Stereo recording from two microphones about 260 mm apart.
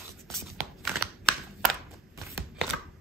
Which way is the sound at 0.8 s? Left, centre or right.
Centre.